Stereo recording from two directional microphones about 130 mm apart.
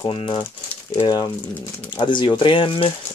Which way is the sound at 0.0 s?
40° left (ahead or behind).